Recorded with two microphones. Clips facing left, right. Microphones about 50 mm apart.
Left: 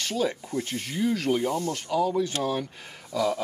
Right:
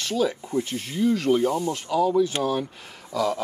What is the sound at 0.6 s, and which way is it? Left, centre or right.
Speech, centre.